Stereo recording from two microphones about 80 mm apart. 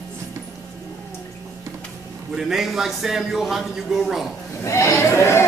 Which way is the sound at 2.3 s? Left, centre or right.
Centre.